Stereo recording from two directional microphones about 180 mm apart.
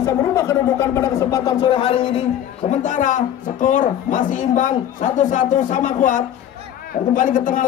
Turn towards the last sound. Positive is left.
turn(degrees=45)  # may be behind; listen again after turning